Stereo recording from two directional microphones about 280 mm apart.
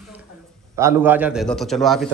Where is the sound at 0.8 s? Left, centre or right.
Centre.